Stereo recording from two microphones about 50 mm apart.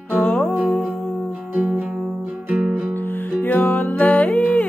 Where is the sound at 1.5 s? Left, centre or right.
Right.